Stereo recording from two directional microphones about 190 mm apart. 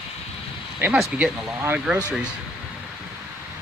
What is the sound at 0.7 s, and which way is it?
Speech, 5° right (ahead or behind).